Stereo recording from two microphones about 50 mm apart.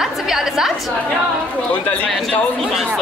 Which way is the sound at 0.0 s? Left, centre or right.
Centre.